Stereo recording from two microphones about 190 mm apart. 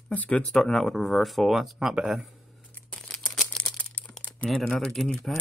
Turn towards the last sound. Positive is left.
turn(degrees=5)  # may be behind; listen again after turning